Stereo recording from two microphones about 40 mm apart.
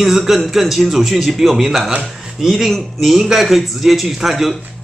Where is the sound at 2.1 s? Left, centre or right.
Centre.